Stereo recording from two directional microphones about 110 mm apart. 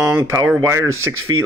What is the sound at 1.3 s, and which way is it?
Speech, 50° right (ahead or behind).